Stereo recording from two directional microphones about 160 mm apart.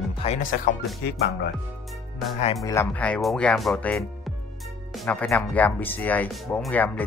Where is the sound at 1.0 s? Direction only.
90° left.